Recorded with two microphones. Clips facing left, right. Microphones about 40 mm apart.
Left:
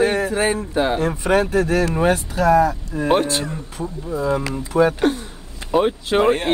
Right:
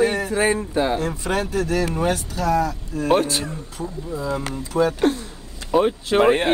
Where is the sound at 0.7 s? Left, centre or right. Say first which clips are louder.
Left 2 dB; left.